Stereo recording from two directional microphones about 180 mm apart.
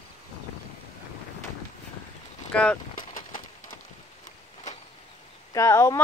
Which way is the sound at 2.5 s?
5° left (ahead or behind).